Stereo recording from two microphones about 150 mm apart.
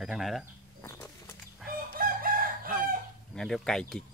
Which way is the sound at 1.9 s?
70° right (ahead or behind).